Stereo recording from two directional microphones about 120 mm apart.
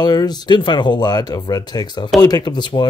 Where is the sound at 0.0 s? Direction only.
35° left (ahead or behind).